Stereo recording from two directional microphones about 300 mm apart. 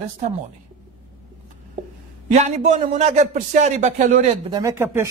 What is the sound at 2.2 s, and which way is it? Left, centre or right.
A man's voice, right.